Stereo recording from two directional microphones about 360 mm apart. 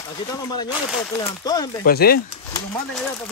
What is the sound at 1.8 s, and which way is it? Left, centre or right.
Speech, left.